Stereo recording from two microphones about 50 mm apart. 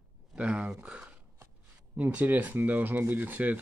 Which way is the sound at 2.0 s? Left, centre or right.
Right.